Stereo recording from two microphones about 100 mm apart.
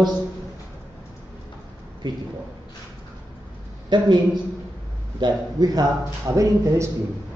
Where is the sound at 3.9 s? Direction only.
45° right (ahead or behind).